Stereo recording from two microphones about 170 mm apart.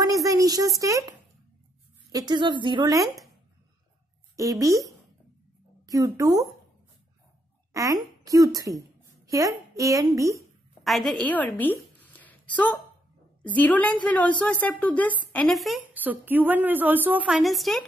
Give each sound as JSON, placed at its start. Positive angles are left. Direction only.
{"t": 0.0, "sound": "a sound", "side_deg": -20}
{"t": 2.1, "sound": "a woman's voice", "side_deg": -25}
{"t": 4.4, "sound": "a woman's voice", "side_deg": -20}
{"t": 7.7, "sound": "a woman's voice", "side_deg": -20}
{"t": 10.8, "sound": "a woman's voice", "side_deg": 0}